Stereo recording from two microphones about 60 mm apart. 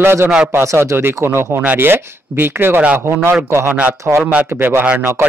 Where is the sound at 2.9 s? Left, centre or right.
Right.